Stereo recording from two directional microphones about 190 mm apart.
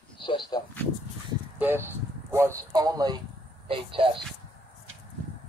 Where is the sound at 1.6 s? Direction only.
10° right (ahead or behind); by 4.2 s 25° right (ahead or behind).